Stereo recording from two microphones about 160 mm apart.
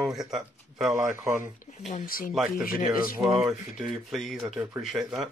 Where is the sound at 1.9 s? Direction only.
65° left (ahead or behind).